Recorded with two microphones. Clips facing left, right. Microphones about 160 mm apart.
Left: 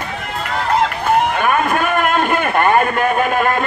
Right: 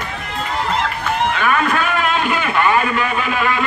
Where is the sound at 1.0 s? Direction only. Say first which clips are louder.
Left 3 dB; 50° left (ahead or behind).